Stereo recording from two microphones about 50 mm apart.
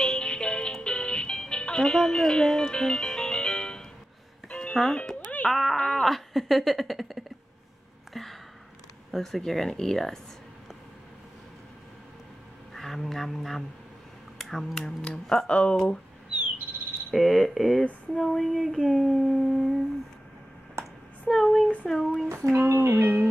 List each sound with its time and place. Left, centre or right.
0.0 s music: centre
5.5 s speech: centre
5.8 s speech: centre
6.0 s speech: centre
8.1 s a sound: centre
9.1 s speech: centre
12.7 s speech: centre
17.1 s speech: centre
18.9 s humming: centre
20.8 s a sound: right
21.3 s speech: centre
22.5 s speech: right